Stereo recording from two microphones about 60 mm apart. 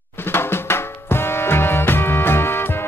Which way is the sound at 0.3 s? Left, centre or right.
Left.